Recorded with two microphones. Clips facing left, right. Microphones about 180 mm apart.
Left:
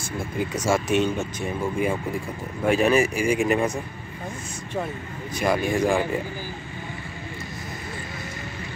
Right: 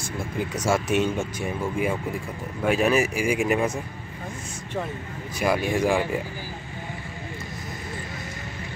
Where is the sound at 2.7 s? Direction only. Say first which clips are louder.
Left 2 dB; 5° right (ahead or behind).